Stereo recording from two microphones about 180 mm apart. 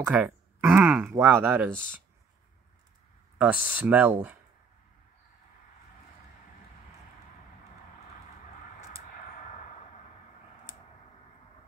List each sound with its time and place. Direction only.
0.1 s speech: 10° right (ahead or behind)
3.3 s speech: 5° right (ahead or behind)
9.0 s a sound: 50° left (ahead or behind)